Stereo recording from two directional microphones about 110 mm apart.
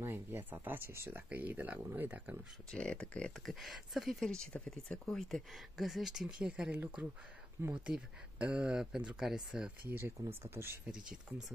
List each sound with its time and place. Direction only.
0.0 s speech: 20° right (ahead or behind)
2.7 s speech: 10° left (ahead or behind)
3.5 s speech: centre (ahead or behind)
10.4 s speech: 20° right (ahead or behind)
10.9 s speech: 5° right (ahead or behind)